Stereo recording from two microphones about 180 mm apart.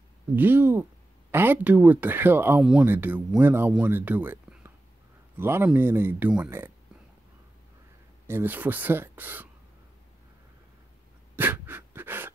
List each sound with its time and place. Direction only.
0.4 s speech: 10° right (ahead or behind)
8.3 s speech: 10° right (ahead or behind)
11.3 s pant: 10° right (ahead or behind)